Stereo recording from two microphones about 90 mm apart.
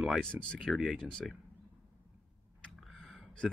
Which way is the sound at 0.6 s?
Centre (ahead or behind).